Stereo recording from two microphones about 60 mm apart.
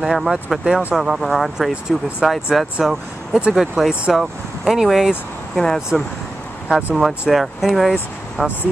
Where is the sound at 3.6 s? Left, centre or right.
Centre.